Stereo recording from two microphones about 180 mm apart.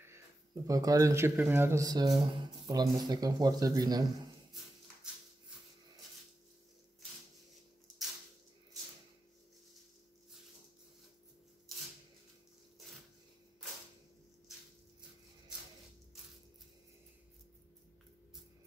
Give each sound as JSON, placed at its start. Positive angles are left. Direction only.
{"t": 0.7, "sound": "speech", "side_deg": -20}